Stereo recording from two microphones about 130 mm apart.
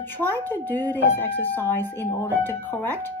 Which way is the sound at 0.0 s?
15° left (ahead or behind).